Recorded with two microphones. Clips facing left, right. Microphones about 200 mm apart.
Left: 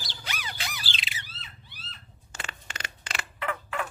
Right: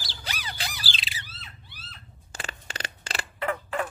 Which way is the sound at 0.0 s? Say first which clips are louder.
Right 1 dB; 35° right (ahead or behind).